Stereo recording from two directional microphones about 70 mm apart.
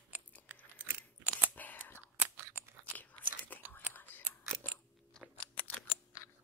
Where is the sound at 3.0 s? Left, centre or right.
Left.